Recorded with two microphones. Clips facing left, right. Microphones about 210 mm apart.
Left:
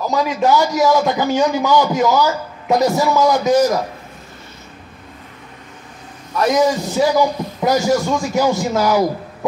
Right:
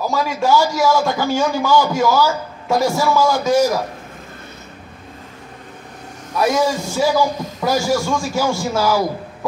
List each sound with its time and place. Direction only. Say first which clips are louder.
0.1 s a man's voice: left 2 dB; 20° left (ahead or behind)
6.5 s a man's voice: left 3 dB; 20° left (ahead or behind)